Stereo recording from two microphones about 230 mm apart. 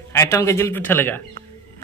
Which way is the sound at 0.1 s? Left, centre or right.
Centre.